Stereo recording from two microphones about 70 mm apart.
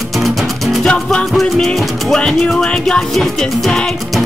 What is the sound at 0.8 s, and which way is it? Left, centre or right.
Music, centre.